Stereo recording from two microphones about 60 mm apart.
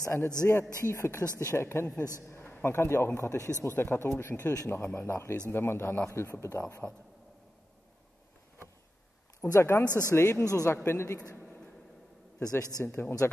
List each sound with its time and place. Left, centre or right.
0.0 s a man's voice: left
3.2 s a man's voice: left
3.6 s a man's voice: left
9.4 s a man's voice: left
9.8 s speech: right
10.1 s a man's voice: left
10.5 s a man's voice: left
10.8 s a man's voice: left
12.4 s speech: right
13.2 s a man's voice: left